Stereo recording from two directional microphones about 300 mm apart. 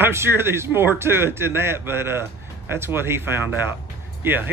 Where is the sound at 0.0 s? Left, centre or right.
Centre.